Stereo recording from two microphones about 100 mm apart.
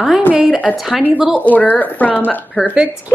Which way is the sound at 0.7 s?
Centre (ahead or behind).